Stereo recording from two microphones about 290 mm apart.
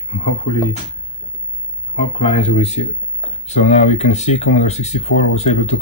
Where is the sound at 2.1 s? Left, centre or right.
Left.